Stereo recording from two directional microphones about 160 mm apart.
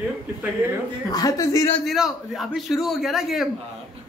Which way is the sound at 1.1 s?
20° left (ahead or behind).